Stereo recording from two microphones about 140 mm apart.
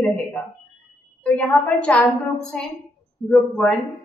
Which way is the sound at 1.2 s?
10° left (ahead or behind).